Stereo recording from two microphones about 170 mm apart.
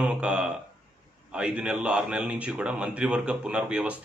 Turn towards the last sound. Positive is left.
turn(degrees=-5)  # may be behind; listen again after turning